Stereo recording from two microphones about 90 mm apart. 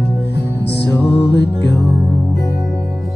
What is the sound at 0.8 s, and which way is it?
Music, 20° left (ahead or behind).